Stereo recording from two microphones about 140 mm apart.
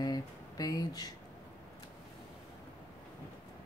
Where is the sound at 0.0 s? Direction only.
30° left (ahead or behind).